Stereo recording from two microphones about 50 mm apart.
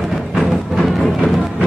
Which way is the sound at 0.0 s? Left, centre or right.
Centre.